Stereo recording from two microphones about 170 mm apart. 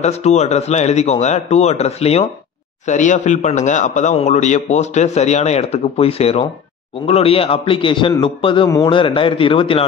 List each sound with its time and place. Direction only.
0.0 s a man's voice: 40° left (ahead or behind)
8.6 s a man's voice: 20° left (ahead or behind)
8.9 s speech: 30° left (ahead or behind)